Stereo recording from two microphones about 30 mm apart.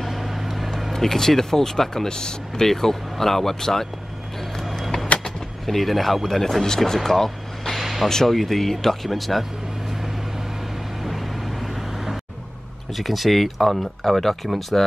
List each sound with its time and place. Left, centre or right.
0.0 s vehicle: centre
0.9 s speech: centre
5.2 s speech: centre
7.8 s a sound: centre
8.3 s speech: centre
9.1 s speech: centre
11.1 s vehicle: centre
12.9 s speech: centre